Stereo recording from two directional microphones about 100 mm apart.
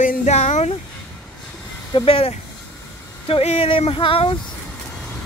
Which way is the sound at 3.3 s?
80° left.